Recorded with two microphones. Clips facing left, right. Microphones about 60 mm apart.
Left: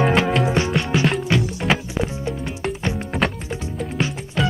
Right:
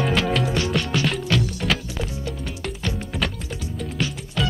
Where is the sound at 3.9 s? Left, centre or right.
Left.